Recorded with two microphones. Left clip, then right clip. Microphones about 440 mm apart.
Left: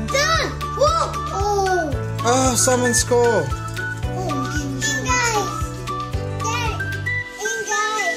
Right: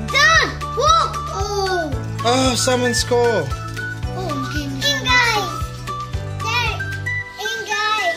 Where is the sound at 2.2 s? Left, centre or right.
Centre.